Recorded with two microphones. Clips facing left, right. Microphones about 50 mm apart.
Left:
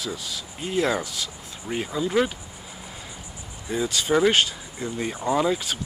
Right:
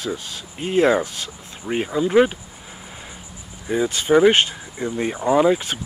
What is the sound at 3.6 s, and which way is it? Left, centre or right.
Speech, right.